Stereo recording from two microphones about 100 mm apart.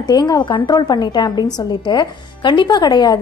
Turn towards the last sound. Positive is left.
turn(degrees=45)  # may be behind; listen again after turning